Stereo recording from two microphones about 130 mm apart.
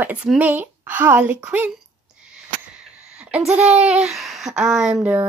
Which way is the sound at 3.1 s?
10° right (ahead or behind).